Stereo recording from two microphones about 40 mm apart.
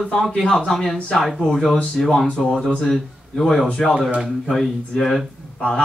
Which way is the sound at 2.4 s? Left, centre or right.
Centre.